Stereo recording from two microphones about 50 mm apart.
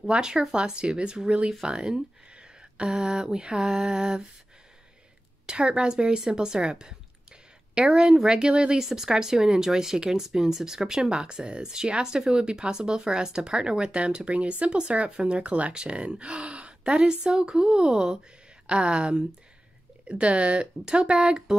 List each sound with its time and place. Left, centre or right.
0.1 s speech: centre
5.5 s speech: centre